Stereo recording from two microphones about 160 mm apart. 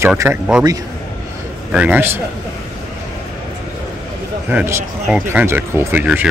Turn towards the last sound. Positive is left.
turn(degrees=-10)  # may be behind; listen again after turning